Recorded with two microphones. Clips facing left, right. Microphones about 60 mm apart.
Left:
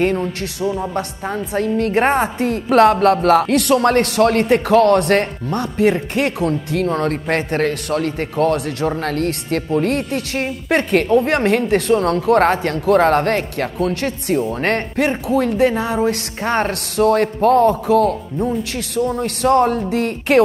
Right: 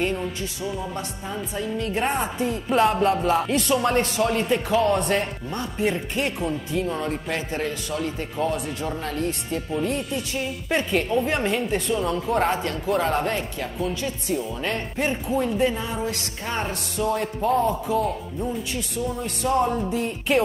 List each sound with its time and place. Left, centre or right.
0.0 s a woman's voice: left